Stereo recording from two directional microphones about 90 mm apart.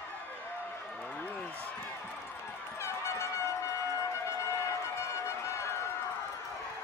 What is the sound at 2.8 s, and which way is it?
Music, 30° left (ahead or behind).